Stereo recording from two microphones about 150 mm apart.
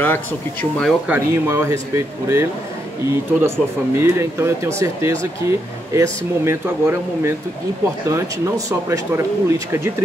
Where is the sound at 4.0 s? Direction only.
15° right (ahead or behind).